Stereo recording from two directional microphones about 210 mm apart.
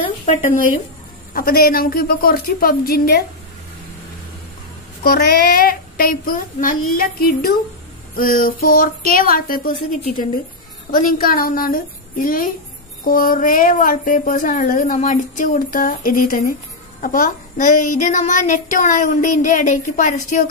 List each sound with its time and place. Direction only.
0.0 s a sound: 25° left (ahead or behind)
1.3 s speech: 45° left (ahead or behind)
5.0 s a woman's voice: 45° left (ahead or behind)